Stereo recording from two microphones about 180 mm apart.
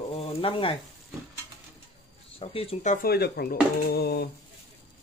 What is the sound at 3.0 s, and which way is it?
Speech, 60° left (ahead or behind).